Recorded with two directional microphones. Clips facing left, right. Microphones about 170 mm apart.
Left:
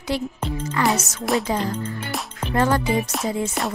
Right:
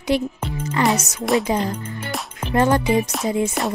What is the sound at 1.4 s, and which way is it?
Speech, 15° right (ahead or behind).